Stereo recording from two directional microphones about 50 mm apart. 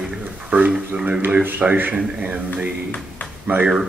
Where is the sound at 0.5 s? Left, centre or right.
Right.